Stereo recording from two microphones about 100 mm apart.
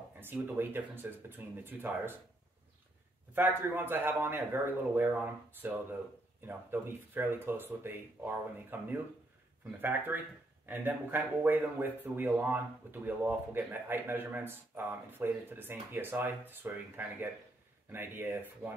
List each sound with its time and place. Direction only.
0.2 s speech: 20° right (ahead or behind)
3.3 s speech: 20° right (ahead or behind)